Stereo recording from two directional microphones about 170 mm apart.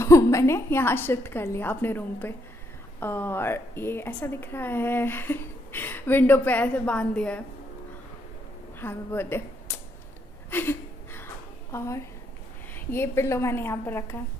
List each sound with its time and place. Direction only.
0.0 s a woman's voice: 15° left (ahead or behind)
8.7 s speech: 15° left (ahead or behind)
10.5 s a sound: 15° left (ahead or behind)
11.7 s a woman's voice: 15° left (ahead or behind)